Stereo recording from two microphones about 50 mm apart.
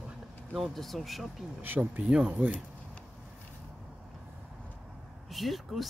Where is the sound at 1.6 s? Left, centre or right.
Right.